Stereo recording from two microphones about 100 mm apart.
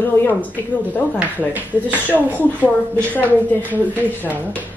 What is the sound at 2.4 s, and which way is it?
A woman's voice, 15° left (ahead or behind).